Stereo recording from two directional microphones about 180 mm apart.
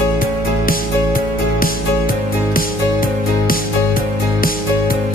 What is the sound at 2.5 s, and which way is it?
Music, 50° left (ahead or behind).